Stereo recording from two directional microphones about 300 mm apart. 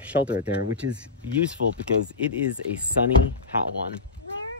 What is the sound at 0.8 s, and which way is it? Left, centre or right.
Speech, right.